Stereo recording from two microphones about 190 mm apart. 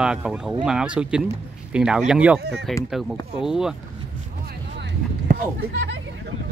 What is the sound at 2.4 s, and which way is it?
Speech, 65° right (ahead or behind).